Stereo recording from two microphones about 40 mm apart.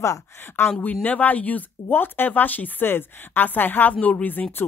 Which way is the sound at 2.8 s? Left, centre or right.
Left.